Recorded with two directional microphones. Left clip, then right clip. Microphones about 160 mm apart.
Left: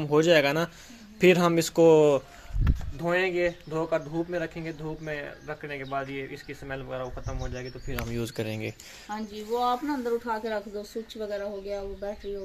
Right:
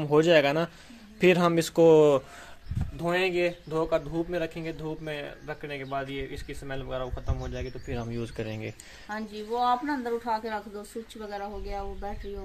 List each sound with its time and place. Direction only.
0.0 s speech: 5° right (ahead or behind)
8.1 s speech: 20° left (ahead or behind)
9.5 s speech: centre (ahead or behind)